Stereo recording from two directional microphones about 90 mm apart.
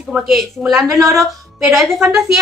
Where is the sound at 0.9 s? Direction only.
35° right (ahead or behind).